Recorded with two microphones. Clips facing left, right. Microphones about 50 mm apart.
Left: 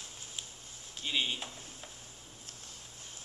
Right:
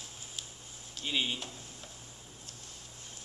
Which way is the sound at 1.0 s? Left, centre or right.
Centre.